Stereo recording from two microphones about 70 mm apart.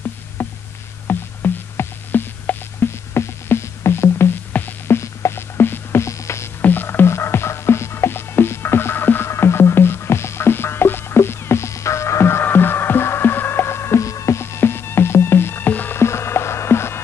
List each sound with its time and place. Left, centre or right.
0.4 s a sound: left
1.0 s music: left
4.9 s music: left
6.6 s music: left
16.0 s music: left